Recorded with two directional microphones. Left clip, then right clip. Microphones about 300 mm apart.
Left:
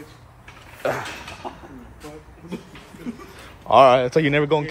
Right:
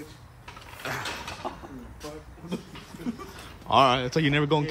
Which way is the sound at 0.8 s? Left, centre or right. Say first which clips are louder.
Left 7 dB; centre.